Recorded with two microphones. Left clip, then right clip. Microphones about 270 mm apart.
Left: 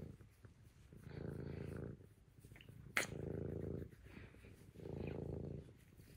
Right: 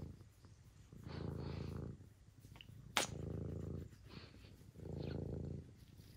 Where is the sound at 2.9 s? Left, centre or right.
Centre.